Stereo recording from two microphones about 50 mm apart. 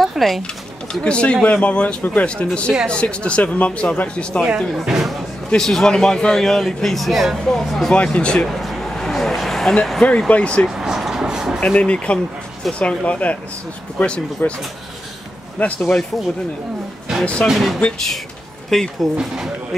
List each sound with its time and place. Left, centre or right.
0.0 s a sound: centre
1.0 s speech: left
4.6 s speech: centre
5.6 s a man's voice: centre
7.9 s speech: left
8.5 s vehicle: centre
10.0 s speech: left
10.7 s vehicle: centre
11.6 s speech: left
15.6 s speech: left
17.2 s speech: left
17.5 s speech: centre
18.7 s a man's voice: centre
19.1 s speech: centre